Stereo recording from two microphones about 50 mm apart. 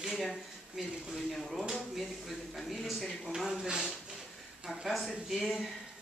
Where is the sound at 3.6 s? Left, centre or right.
Centre.